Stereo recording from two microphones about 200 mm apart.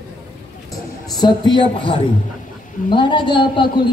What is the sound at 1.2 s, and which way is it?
Child singing, 25° left (ahead or behind).